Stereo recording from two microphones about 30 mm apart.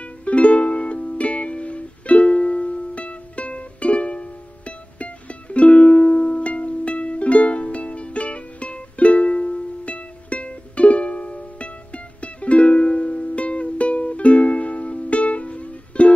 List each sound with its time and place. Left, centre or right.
0.0 s music: left